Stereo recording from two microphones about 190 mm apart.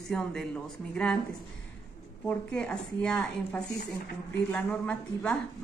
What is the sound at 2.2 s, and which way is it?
A woman's voice, 5° left (ahead or behind).